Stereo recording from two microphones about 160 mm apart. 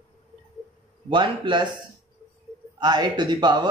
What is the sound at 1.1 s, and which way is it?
Speech, 30° right (ahead or behind).